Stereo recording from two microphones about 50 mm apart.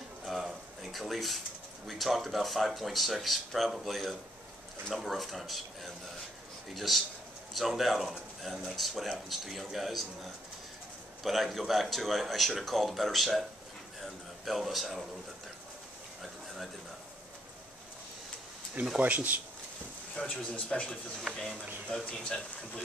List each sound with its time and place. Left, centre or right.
0.2 s a sound: centre
0.9 s speech: centre
18.9 s speech: right
20.2 s speech: left
21.2 s speech: centre
22.0 s speech: centre